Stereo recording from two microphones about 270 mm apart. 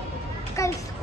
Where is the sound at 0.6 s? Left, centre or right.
Centre.